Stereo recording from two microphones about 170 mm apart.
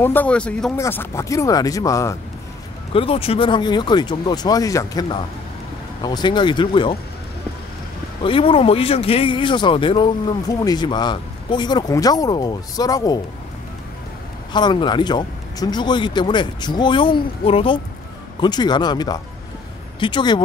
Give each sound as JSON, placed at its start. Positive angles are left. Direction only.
{"t": 0.0, "sound": "speech", "side_deg": 10}
{"t": 2.9, "sound": "speech", "side_deg": 35}
{"t": 8.2, "sound": "speech", "side_deg": 30}
{"t": 14.5, "sound": "speech", "side_deg": 25}